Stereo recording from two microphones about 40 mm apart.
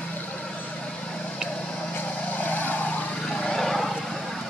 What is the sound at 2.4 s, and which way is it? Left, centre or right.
Vehicle, left.